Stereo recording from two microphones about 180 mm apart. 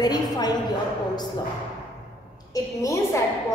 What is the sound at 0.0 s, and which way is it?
Speech, 20° left (ahead or behind).